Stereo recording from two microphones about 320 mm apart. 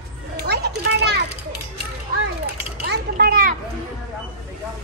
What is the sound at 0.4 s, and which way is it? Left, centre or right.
Children playing, right.